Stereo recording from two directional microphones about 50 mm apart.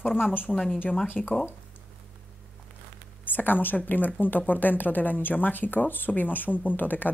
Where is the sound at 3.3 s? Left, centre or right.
Left.